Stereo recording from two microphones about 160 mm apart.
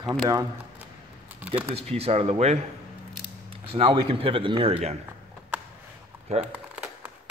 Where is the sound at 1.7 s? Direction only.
40° right (ahead or behind).